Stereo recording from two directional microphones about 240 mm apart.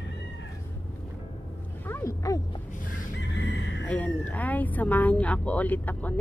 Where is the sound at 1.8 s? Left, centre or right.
Centre.